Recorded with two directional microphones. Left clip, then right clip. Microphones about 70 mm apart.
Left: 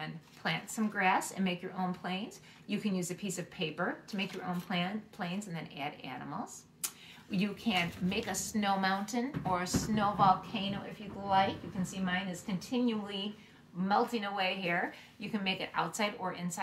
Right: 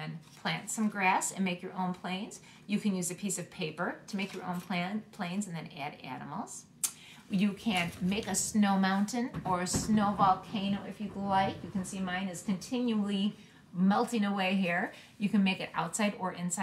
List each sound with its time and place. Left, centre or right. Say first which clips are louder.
0.0 s a woman's voice: even; right; by 16.6 s centre